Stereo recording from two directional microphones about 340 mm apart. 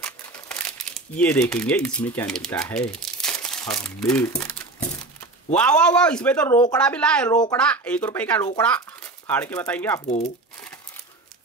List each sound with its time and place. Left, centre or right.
0.5 s speech: centre
10.0 s speech: centre